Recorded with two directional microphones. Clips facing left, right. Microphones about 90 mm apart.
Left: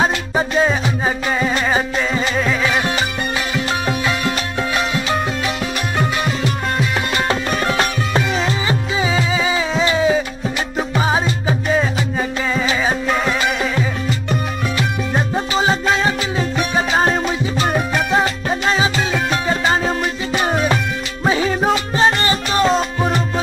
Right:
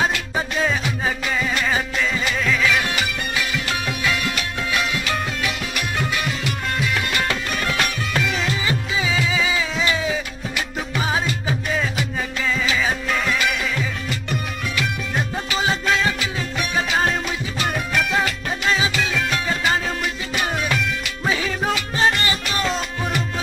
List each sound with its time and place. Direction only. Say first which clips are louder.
0.0 s music: left 5 dB; 30° left (ahead or behind)